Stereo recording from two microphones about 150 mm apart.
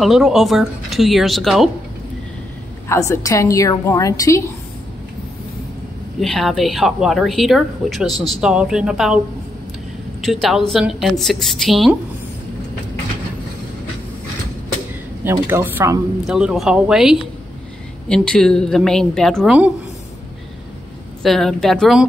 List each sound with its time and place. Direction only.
0.0 s speech: centre (ahead or behind)
2.9 s a woman's voice: 20° left (ahead or behind)
6.2 s speech: centre (ahead or behind)
10.2 s speech: centre (ahead or behind)
15.4 s speech: 15° right (ahead or behind)
16.3 s speech: 5° right (ahead or behind)
21.2 s speech: centre (ahead or behind)